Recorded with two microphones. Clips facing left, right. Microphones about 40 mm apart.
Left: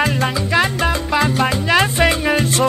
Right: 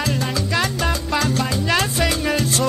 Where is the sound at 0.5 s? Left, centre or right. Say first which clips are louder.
Left 5 dB; left.